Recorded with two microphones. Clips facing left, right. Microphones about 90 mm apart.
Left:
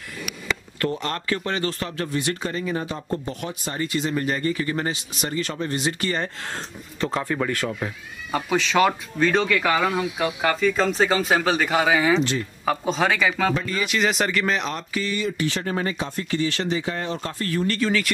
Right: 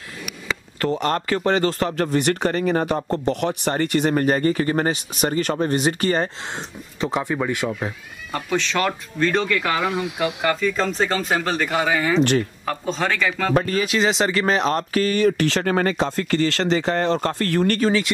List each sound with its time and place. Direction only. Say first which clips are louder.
1.0 s a man's voice: right 6 dB; 35° right (ahead or behind)
2.0 s a man's voice: right 4 dB; 65° right (ahead or behind); by 6.3 s 40° right (ahead or behind)
6.5 s speech: right 1 dB; 15° right (ahead or behind)
8.3 s speech: left 1 dB; 5° left (ahead or behind)
12.2 s speech: right 6 dB; 60° right (ahead or behind)
12.6 s speech: left 2 dB; 5° left (ahead or behind)
13.9 s speech: right 2 dB; 25° right (ahead or behind); by 17.7 s 70° right (ahead or behind)